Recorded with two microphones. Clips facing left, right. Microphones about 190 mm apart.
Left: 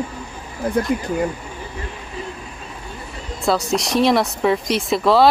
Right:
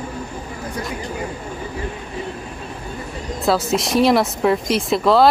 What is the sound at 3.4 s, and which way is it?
Speech, centre (ahead or behind).